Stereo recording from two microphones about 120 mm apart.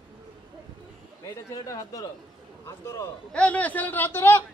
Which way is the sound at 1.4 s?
30° left (ahead or behind).